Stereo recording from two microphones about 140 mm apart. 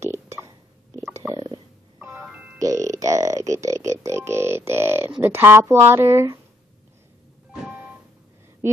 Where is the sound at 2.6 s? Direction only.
25° right (ahead or behind).